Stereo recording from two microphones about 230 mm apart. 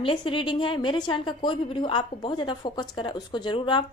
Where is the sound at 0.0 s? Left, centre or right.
Left.